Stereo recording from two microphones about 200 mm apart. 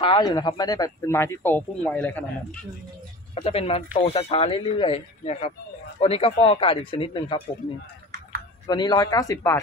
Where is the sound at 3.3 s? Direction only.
30° left (ahead or behind).